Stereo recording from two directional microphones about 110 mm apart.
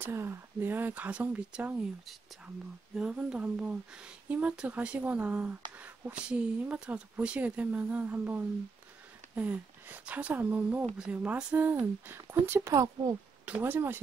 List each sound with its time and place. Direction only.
0.0 s speech: 25° right (ahead or behind)
12.7 s speech: 35° right (ahead or behind)
13.5 s speech: 20° right (ahead or behind)